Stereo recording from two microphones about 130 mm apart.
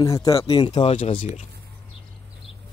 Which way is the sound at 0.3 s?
45° left (ahead or behind).